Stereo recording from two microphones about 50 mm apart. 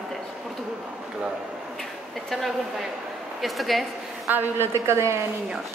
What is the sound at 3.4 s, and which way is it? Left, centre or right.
Speech, centre.